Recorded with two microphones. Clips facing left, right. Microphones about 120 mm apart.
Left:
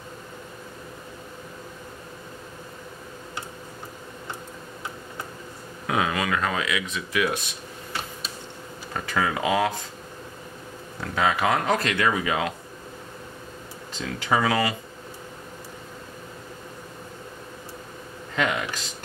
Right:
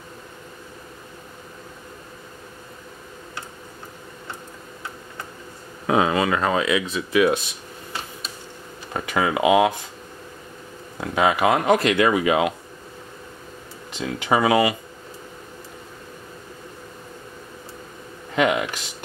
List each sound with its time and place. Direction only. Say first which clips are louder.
5.9 s speech: right 6 dB; 30° right (ahead or behind)
8.9 s speech: right 4 dB; 20° right (ahead or behind)
11.0 s speech: right 4 dB; 15° right (ahead or behind)
13.9 s speech: right 3 dB; 15° right (ahead or behind)
18.3 s a sound: right 6 dB; 15° right (ahead or behind)